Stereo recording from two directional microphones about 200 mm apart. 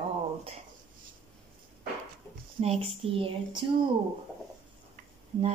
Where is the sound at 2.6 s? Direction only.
30° right (ahead or behind).